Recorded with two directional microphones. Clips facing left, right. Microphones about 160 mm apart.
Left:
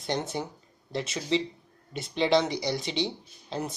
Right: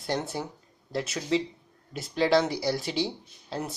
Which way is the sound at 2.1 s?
20° left (ahead or behind).